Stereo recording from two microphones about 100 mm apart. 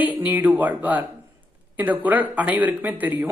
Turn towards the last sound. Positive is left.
turn(degrees=-15)  # may be behind; listen again after turning